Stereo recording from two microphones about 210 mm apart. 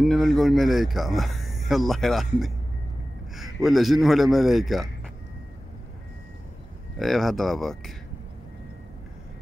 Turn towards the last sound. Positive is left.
turn(degrees=0)  # may be behind; listen again after turning